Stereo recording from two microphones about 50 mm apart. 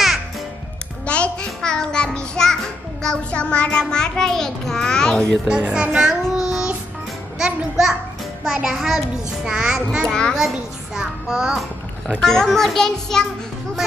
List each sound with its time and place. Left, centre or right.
1.0 s music: left
3.3 s child singing: left
3.9 s a child's voice: centre
5.5 s a child's voice: centre
5.9 s child singing: centre
7.3 s a child's voice: centre
10.0 s a child's voice: centre
10.3 s a child's voice: centre
12.2 s a child's voice: centre